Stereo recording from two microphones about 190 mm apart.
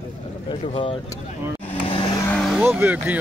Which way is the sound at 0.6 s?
30° left (ahead or behind).